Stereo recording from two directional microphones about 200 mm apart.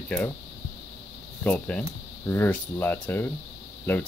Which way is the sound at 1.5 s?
5° left (ahead or behind).